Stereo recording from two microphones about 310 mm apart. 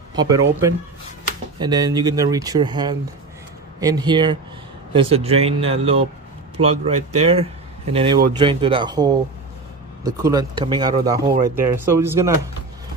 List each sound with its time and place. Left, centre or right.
0.1 s speech: centre
7.2 s speech: centre